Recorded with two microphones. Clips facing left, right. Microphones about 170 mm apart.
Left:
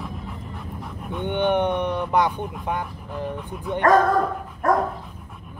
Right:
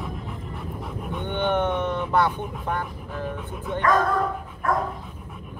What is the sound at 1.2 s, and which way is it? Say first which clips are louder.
Speech: left 3 dB; 15° left (ahead or behind).